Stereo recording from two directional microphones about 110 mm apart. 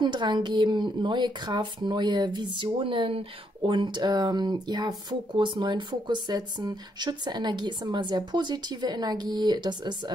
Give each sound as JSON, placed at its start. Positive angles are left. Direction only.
{"t": 0.0, "sound": "a woman's voice", "side_deg": -45}